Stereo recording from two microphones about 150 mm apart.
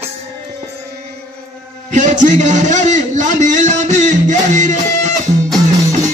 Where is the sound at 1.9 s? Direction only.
55° right (ahead or behind).